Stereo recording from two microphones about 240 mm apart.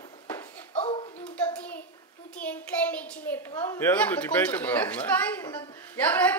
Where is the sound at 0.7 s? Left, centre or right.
Left.